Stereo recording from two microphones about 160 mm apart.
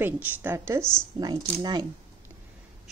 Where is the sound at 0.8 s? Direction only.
5° left (ahead or behind).